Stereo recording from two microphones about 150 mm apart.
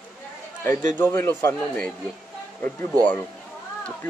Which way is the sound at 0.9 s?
15° left (ahead or behind).